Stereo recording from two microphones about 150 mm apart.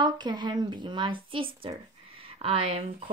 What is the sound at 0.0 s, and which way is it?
Speech, 30° right (ahead or behind).